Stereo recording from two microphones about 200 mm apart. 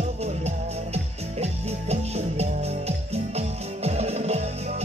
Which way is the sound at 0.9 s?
30° right (ahead or behind).